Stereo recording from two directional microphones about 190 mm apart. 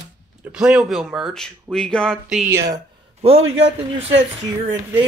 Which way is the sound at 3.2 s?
30° right (ahead or behind).